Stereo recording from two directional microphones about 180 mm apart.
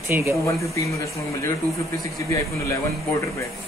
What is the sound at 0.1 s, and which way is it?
Speech, 15° right (ahead or behind).